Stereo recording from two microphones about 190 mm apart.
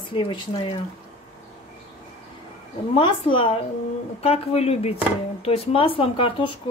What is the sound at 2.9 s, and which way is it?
Speech, 25° left (ahead or behind).